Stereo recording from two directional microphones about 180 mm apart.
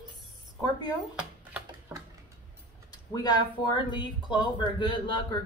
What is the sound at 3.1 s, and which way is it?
Speech, 20° left (ahead or behind).